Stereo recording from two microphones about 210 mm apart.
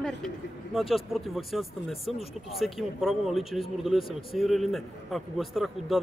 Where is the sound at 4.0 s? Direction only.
25° left (ahead or behind).